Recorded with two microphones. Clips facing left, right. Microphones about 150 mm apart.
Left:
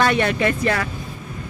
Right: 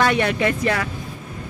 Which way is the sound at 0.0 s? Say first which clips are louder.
Even; 15° right (ahead or behind).